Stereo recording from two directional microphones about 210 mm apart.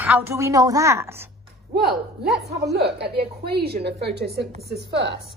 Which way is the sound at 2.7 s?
50° right (ahead or behind).